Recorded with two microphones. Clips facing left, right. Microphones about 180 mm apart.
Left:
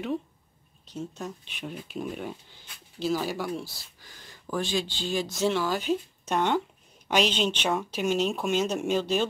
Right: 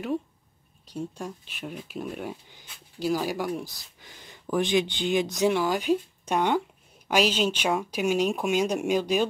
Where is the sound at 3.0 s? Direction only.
10° right (ahead or behind).